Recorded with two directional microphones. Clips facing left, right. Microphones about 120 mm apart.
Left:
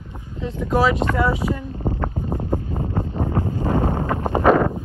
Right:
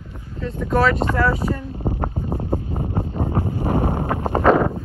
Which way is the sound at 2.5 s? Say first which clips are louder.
Even; 15° right (ahead or behind).